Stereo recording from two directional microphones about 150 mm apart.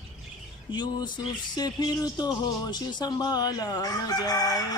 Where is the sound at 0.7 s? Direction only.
30° left (ahead or behind).